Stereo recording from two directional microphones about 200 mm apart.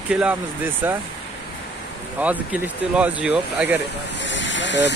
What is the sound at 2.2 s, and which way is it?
Speech, 5° right (ahead or behind).